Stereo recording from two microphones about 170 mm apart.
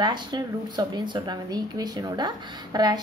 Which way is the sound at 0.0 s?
25° right (ahead or behind).